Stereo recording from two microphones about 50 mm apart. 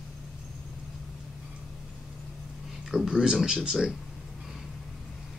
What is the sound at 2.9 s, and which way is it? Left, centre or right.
Speech, centre.